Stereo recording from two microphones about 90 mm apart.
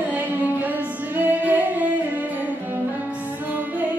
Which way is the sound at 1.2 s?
20° right (ahead or behind).